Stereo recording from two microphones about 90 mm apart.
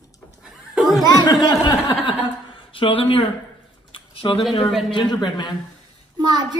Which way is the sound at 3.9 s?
80° left.